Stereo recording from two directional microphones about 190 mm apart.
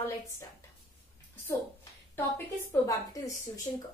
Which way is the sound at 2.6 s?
15° left (ahead or behind).